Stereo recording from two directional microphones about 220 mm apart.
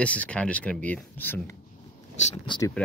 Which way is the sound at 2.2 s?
30° left (ahead or behind).